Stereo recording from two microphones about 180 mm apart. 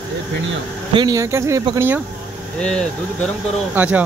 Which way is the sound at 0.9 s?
20° right (ahead or behind).